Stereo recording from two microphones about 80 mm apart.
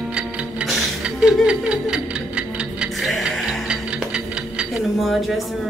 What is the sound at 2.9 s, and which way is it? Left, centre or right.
Music, centre.